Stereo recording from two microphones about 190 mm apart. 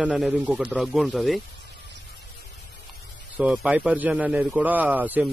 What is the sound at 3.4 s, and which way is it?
Speech, 5° right (ahead or behind).